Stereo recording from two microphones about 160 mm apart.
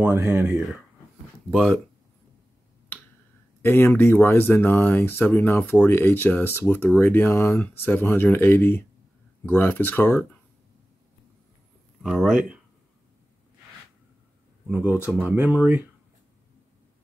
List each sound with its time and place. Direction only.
0.1 s speech: 15° right (ahead or behind)
3.6 s speech: 15° left (ahead or behind)
12.0 s speech: centre (ahead or behind)
14.7 s speech: 10° right (ahead or behind)